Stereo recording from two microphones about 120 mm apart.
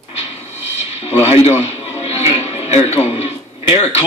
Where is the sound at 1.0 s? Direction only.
60° left (ahead or behind).